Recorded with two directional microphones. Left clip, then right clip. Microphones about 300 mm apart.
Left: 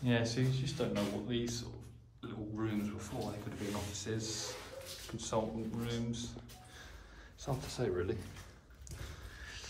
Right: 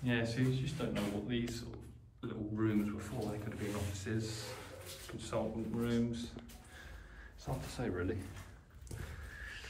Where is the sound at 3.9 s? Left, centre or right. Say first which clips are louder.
Left 1 dB; centre.